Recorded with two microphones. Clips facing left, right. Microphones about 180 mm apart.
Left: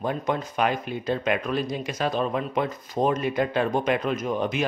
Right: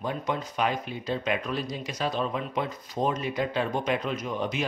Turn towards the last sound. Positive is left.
turn(degrees=50)  # may be behind; listen again after turning